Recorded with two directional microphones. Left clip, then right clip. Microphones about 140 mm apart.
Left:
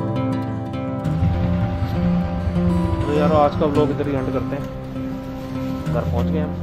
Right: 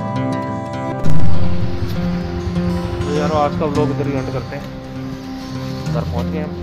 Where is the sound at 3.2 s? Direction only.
30° left (ahead or behind).